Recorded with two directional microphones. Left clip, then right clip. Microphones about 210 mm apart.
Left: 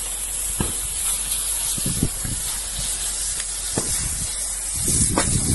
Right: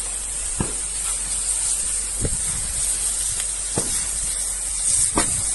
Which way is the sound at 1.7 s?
25° right (ahead or behind).